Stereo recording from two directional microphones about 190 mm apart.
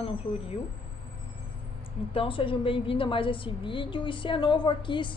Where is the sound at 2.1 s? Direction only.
30° left (ahead or behind).